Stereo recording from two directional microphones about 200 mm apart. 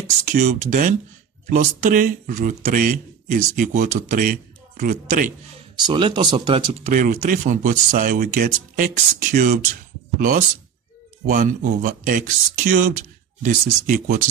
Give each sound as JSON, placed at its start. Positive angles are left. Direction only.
{"t": 0.0, "sound": "speech", "side_deg": -40}
{"t": 5.9, "sound": "speech", "side_deg": -25}
{"t": 11.2, "sound": "speech", "side_deg": -40}